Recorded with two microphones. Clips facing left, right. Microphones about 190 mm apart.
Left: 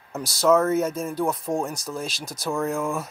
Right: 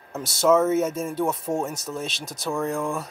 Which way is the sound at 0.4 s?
5° right (ahead or behind).